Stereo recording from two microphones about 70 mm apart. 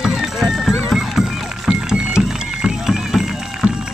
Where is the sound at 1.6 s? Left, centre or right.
Centre.